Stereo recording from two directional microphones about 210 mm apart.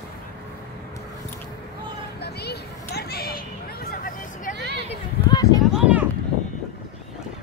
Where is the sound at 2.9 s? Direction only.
50° left (ahead or behind).